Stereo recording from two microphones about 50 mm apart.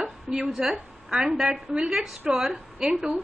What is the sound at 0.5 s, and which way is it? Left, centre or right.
A woman's voice, centre.